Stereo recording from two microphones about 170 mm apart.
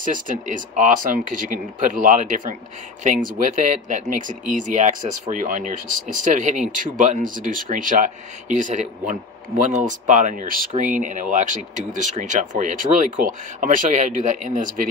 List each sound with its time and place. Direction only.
0.0 s speech: 50° right (ahead or behind)